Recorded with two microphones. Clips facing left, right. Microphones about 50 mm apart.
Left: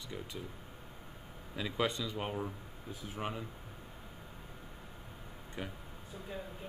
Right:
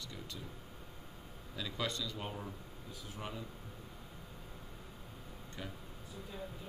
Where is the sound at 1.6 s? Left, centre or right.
Left.